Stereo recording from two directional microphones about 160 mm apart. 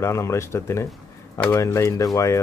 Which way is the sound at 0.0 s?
20° left (ahead or behind).